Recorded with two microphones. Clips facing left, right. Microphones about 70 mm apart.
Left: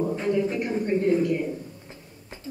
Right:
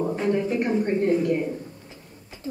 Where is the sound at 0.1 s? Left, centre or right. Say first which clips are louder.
Right 1 dB; right.